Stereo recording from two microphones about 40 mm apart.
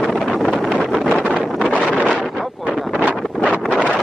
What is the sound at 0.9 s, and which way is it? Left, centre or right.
Wind noise, centre.